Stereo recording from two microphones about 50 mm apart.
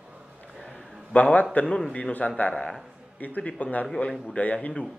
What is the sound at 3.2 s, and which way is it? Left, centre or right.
A man's voice, left.